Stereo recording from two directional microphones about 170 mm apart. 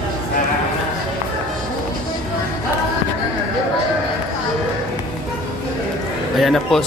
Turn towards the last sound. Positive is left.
turn(degrees=0)  # may be behind; listen again after turning